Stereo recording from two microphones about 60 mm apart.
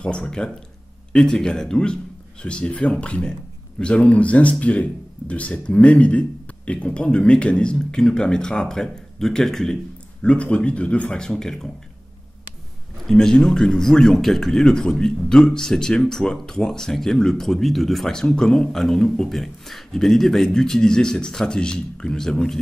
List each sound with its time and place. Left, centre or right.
0.0 s speech: centre
10.2 s speech: centre
13.0 s speech: centre